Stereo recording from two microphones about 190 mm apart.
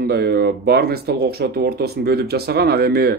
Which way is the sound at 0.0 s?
55° right (ahead or behind).